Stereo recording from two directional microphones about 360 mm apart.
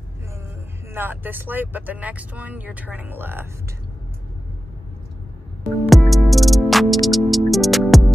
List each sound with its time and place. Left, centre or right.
0.8 s speech: centre
5.9 s music: centre